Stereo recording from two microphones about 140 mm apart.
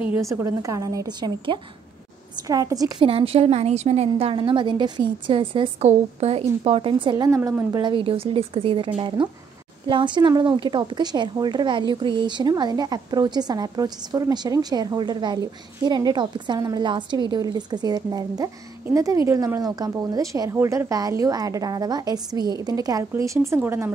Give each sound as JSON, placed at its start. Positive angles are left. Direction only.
{"t": 0.2, "sound": "a woman's voice", "side_deg": -25}
{"t": 3.1, "sound": "a woman's voice", "side_deg": -45}
{"t": 4.1, "sound": "a woman's voice", "side_deg": -40}
{"t": 5.9, "sound": "a woman's voice", "side_deg": -50}
{"t": 7.2, "sound": "a woman's voice", "side_deg": -20}
{"t": 7.8, "sound": "a woman's voice", "side_deg": -35}